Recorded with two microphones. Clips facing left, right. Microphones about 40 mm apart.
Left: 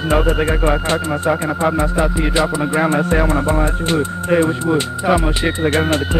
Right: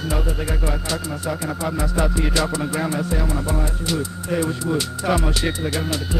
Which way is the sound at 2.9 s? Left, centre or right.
Left.